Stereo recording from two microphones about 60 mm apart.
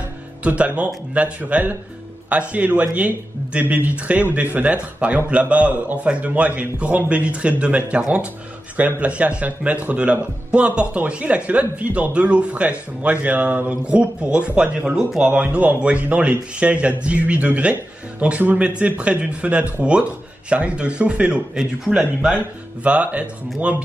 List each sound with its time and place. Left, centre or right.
0.4 s speech: right
21.5 s speech: centre
22.8 s speech: right